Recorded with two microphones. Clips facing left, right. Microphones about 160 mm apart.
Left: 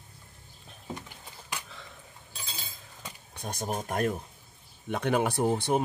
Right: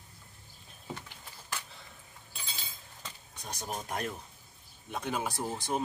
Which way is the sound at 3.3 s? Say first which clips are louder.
Left 6 dB; 55° left (ahead or behind).